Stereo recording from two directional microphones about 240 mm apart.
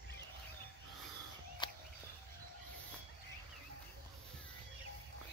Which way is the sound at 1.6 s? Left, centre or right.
Centre.